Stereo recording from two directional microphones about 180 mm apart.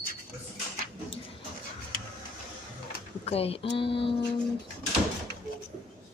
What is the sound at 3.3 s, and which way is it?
Speech, 35° left (ahead or behind).